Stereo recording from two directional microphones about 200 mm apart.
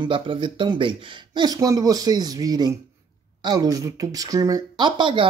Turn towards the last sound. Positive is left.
turn(degrees=-25)  # may be behind; listen again after turning